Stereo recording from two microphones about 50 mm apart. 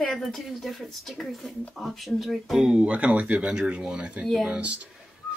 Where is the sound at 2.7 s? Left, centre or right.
Right.